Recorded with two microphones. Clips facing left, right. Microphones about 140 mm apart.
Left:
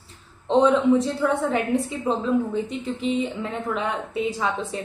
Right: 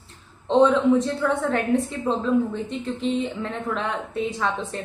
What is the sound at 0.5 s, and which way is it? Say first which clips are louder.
A woman's voice: even; 5° left (ahead or behind).